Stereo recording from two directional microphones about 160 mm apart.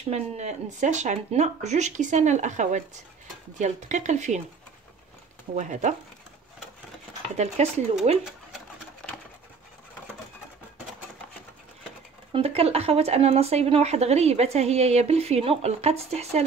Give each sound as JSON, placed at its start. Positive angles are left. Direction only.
{"t": 0.1, "sound": "speech", "side_deg": -45}
{"t": 5.6, "sound": "speech", "side_deg": -50}
{"t": 7.3, "sound": "speech", "side_deg": -40}
{"t": 12.3, "sound": "speech", "side_deg": -35}